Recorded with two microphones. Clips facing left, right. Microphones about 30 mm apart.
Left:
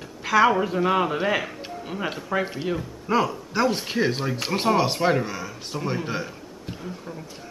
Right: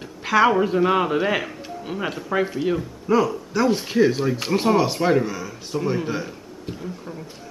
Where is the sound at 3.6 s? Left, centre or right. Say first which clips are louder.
Right 4 dB; centre.